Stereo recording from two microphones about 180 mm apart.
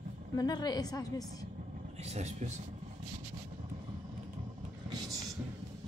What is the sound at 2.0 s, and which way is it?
Speech, 40° right (ahead or behind).